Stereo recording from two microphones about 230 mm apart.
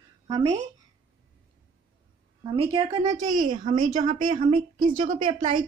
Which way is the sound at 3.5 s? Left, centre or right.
Right.